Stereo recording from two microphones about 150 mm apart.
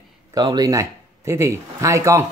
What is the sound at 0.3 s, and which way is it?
Speech, 25° right (ahead or behind).